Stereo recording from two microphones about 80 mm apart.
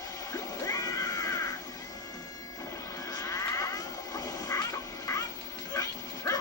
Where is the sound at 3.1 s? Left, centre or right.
Left.